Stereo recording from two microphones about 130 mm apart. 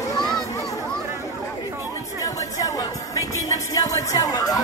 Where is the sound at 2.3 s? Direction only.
25° left (ahead or behind).